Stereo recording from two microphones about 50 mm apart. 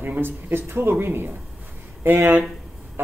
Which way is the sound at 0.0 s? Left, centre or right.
Right.